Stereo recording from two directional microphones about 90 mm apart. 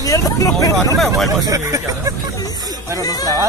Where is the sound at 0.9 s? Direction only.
Centre (ahead or behind).